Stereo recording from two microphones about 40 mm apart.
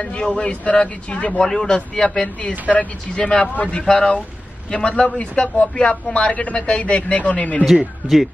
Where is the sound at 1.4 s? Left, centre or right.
Centre.